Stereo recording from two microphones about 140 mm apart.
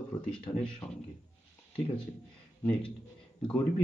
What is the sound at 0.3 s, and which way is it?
Speech, 5° left (ahead or behind).